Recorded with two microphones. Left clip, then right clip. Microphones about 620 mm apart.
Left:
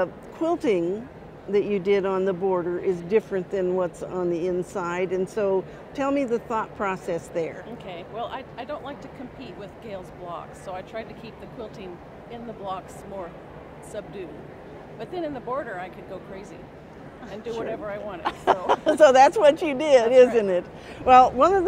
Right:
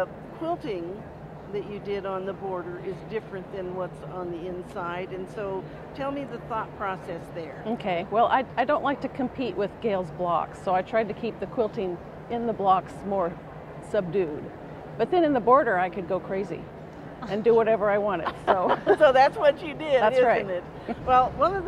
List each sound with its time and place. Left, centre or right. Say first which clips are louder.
0.0 s a man's voice: left 4 dB; left
7.8 s speech: right 11 dB; right
18.2 s a woman's voice: left 1 dB; left